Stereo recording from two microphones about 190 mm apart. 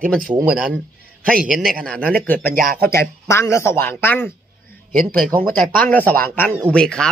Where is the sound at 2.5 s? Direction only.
45° right (ahead or behind).